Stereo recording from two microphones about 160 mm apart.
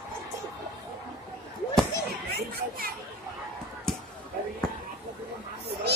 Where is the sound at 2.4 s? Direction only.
70° right (ahead or behind).